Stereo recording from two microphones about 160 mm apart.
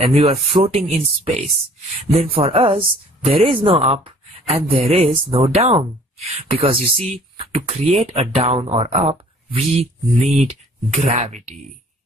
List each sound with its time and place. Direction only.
0.1 s speech: 35° right (ahead or behind)